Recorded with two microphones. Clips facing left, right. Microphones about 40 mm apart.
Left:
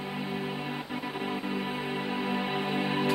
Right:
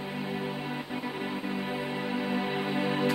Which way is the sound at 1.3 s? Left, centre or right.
Centre.